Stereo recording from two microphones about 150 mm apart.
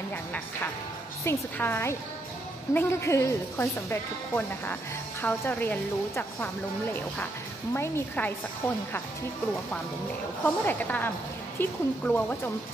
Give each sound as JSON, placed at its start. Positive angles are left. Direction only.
{"t": 1.2, "sound": "speech", "side_deg": 15}
{"t": 10.4, "sound": "speech", "side_deg": 10}